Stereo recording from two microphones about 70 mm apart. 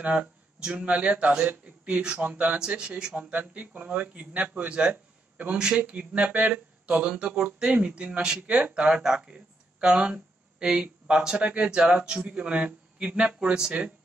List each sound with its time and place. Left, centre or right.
0.0 s speech: centre